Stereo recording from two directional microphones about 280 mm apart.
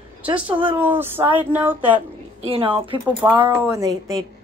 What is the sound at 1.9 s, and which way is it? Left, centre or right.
A woman's voice, centre.